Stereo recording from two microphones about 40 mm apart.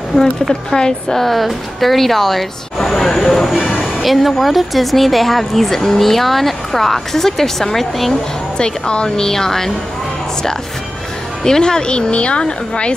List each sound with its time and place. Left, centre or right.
0.1 s a woman's voice: centre
0.7 s a woman's voice: centre
8.5 s a woman's voice: left
11.4 s speech: centre